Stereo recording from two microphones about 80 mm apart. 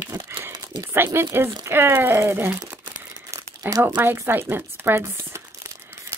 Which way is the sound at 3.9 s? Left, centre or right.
Right.